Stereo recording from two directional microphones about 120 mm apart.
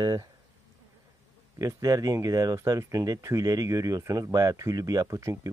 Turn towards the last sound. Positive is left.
turn(degrees=-25)  # may be behind; listen again after turning